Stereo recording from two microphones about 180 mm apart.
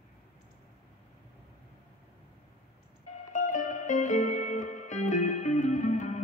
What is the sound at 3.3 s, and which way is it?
Music, 45° left (ahead or behind).